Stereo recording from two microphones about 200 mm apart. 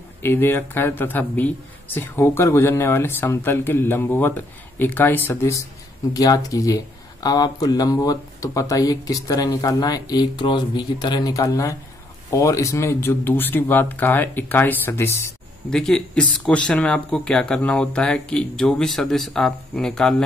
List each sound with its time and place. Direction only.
0.2 s speech: 10° left (ahead or behind)